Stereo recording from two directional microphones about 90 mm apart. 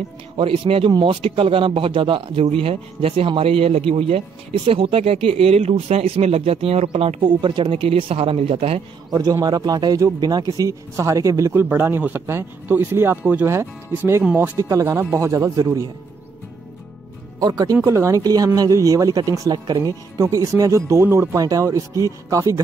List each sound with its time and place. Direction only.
0.4 s a man's voice: 90° right
9.1 s speech: 45° right (ahead or behind)
11.7 s speech: 25° right (ahead or behind)
13.5 s speech: 30° right (ahead or behind)
14.2 s speech: 20° right (ahead or behind)
14.6 s speech: 35° right (ahead or behind)
17.4 s speech: 45° right (ahead or behind)
17.8 s speech: 35° right (ahead or behind)
18.2 s speech: 45° right (ahead or behind)